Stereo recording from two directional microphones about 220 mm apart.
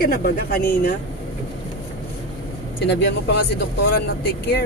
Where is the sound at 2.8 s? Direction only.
50° left (ahead or behind).